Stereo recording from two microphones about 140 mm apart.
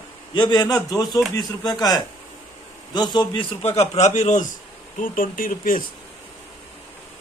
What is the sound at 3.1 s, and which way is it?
Speech, 40° left (ahead or behind).